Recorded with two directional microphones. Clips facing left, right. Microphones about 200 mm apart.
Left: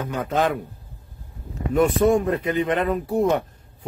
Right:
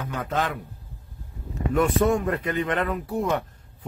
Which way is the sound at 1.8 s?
30° left (ahead or behind).